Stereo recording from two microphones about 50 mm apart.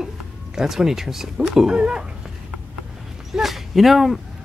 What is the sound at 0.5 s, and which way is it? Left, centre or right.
Speech, centre.